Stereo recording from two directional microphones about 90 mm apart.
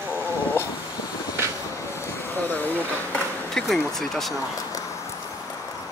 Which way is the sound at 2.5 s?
20° left (ahead or behind).